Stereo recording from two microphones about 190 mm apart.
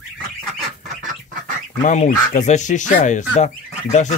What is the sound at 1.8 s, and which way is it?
Speech, 40° left (ahead or behind).